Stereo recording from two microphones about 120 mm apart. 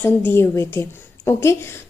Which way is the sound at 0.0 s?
20° left (ahead or behind).